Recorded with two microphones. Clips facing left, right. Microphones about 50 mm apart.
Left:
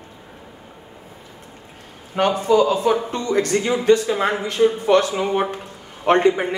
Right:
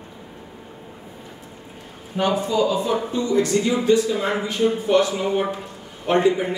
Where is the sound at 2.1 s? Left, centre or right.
Left.